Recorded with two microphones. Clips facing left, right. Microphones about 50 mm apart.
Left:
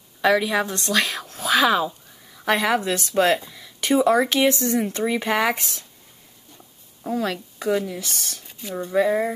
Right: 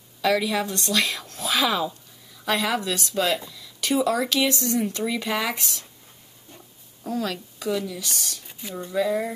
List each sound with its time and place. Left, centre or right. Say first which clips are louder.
0.2 s a woman's voice: left 3 dB; left
7.1 s speech: left 3 dB; left
8.5 s a sound: left 3 dB; centre
8.8 s speech: left 4 dB; left